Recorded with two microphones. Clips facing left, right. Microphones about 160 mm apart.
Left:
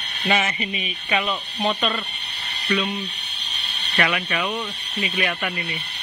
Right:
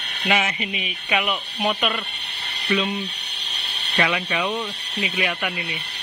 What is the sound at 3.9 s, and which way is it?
Speech, 15° right (ahead or behind).